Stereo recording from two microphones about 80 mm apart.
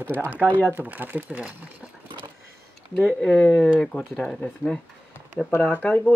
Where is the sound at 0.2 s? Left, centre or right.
Right.